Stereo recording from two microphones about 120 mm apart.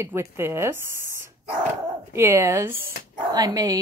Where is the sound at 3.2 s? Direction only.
30° right (ahead or behind).